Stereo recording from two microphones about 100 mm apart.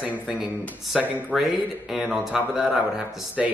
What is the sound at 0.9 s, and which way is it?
Speech, 5° right (ahead or behind).